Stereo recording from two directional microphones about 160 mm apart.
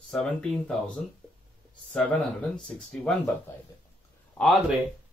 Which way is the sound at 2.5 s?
5° left (ahead or behind).